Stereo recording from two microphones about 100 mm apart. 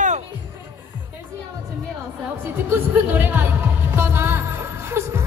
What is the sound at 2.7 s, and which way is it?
Music, 20° right (ahead or behind).